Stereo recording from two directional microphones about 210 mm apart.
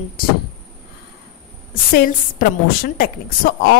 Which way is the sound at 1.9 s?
45° left (ahead or behind).